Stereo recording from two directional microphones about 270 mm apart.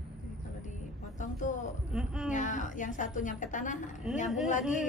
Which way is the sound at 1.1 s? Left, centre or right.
Left.